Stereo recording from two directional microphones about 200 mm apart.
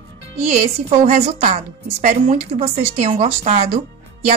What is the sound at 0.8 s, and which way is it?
A woman's voice, 35° right (ahead or behind).